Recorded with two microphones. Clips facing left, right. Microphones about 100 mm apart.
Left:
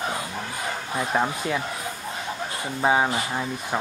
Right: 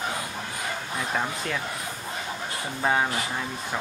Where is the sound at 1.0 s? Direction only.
20° left (ahead or behind).